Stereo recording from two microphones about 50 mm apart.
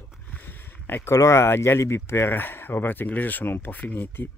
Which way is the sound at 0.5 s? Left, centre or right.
Left.